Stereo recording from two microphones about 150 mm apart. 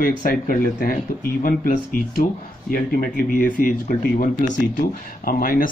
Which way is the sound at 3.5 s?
70° left (ahead or behind).